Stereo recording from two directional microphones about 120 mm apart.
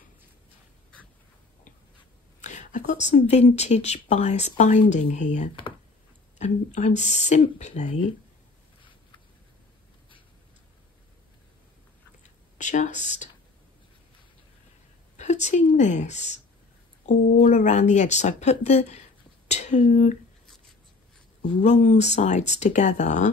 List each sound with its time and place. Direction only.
2.4 s speech: 90° left
12.2 s a sound: 90° left
15.1 s speech: 75° left (ahead or behind)
17.0 s speech: 90° left; by 18.9 s 65° left (ahead or behind)
19.4 s a sound: 70° left (ahead or behind)
21.6 s speech: 70° left (ahead or behind)